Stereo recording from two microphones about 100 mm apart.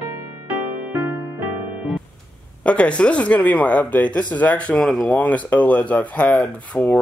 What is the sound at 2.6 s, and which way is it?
Speech, 10° left (ahead or behind).